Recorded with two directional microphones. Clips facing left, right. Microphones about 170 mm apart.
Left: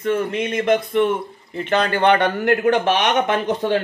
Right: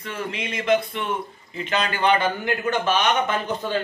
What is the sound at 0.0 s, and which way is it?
Speech, 50° left (ahead or behind).